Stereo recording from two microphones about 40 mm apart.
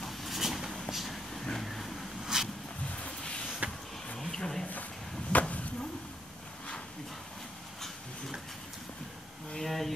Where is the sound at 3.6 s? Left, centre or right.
Right.